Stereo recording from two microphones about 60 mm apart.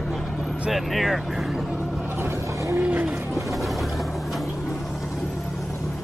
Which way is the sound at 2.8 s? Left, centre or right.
Centre.